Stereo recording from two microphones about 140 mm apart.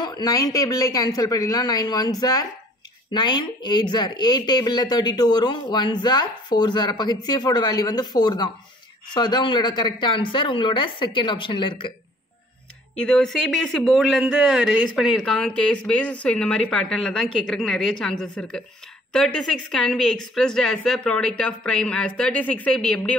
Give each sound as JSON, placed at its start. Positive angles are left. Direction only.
{"t": 0.0, "sound": "speech", "side_deg": 30}
{"t": 12.9, "sound": "a woman's voice", "side_deg": 5}